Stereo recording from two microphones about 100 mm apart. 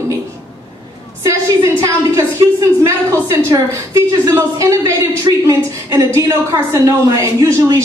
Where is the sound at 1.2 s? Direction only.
30° right (ahead or behind).